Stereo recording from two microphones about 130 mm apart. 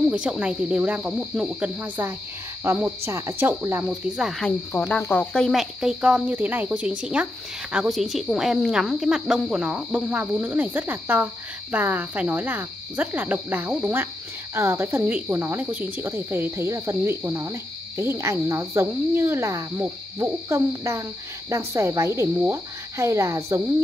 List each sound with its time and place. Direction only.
0.1 s speech: 10° right (ahead or behind)
1.8 s speech: 15° right (ahead or behind)
3.9 s speech: 5° right (ahead or behind); by 23.6 s 25° right (ahead or behind)